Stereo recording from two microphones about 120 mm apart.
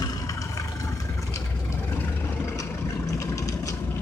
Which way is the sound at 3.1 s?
30° left (ahead or behind).